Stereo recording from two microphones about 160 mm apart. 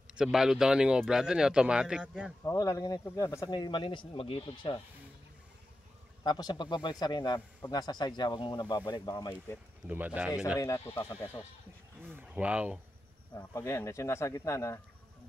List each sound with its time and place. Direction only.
0.1 s speech: 5° right (ahead or behind)
2.4 s speech: 20° left (ahead or behind)
6.2 s speech: 25° left (ahead or behind)
9.8 s speech: 10° right (ahead or behind)
10.6 s speech: 20° left (ahead or behind)
12.0 s speech: 10° right (ahead or behind)
13.4 s speech: 20° left (ahead or behind)